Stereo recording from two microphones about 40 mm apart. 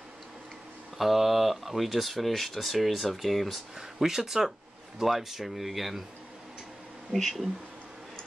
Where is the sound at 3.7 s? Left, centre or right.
Centre.